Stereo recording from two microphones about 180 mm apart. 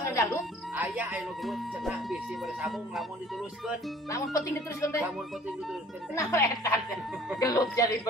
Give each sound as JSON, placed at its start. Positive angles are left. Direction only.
{"t": 0.0, "sound": "music", "side_deg": 15}
{"t": 0.7, "sound": "speech", "side_deg": -10}
{"t": 4.1, "sound": "speech", "side_deg": 15}
{"t": 6.1, "sound": "speech", "side_deg": 15}